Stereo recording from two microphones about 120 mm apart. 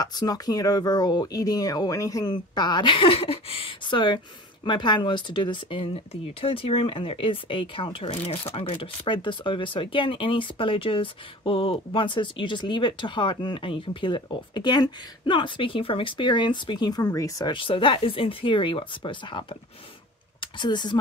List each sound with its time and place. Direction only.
0.0 s speech: 35° left (ahead or behind)
17.6 s speech: 45° left (ahead or behind)